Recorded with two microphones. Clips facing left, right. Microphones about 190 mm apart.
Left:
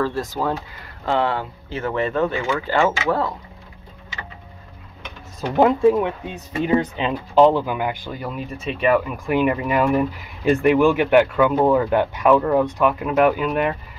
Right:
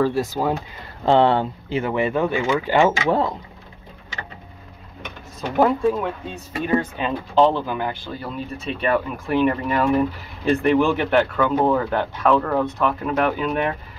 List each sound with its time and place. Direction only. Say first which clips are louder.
0.0 s speech: right 2 dB; 10° right (ahead or behind)
1.0 s speech: right 5 dB; 30° right (ahead or behind)
1.7 s speech: right 1 dB; 15° right (ahead or behind)
5.6 s speech: left 3 dB; 20° left (ahead or behind)